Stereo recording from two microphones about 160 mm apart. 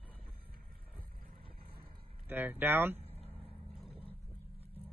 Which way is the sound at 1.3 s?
70° right (ahead or behind).